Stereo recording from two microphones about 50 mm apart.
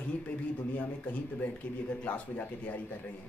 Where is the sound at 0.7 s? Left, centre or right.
Left.